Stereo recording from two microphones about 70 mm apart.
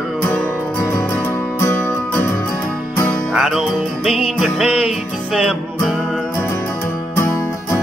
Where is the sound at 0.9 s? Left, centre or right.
Left.